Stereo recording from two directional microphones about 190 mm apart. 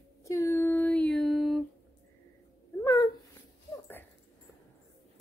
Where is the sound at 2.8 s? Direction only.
15° left (ahead or behind).